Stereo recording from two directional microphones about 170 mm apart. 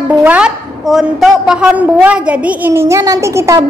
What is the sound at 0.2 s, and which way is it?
A woman's voice, 5° right (ahead or behind).